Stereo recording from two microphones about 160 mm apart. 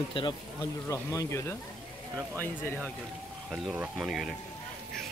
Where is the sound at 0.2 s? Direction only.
30° left (ahead or behind).